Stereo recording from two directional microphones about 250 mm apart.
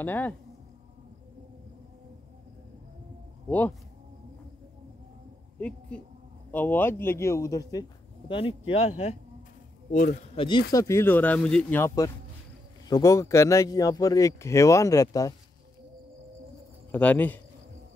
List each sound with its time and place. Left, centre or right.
0.0 s speech: centre
3.4 s speech: centre
5.6 s speech: centre
16.9 s a man's voice: centre